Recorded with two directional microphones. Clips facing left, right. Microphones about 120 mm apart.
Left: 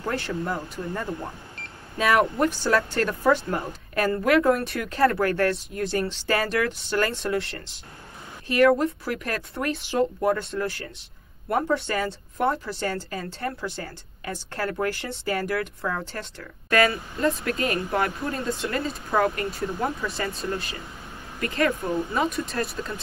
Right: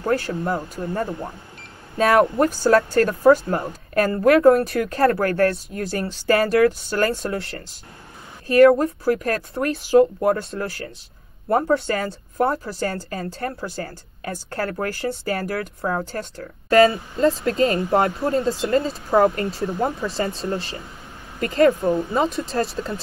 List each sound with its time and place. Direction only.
0.3 s speech: 45° right (ahead or behind)
2.4 s a woman's voice: 45° right (ahead or behind)
8.5 s a woman's voice: 40° right (ahead or behind)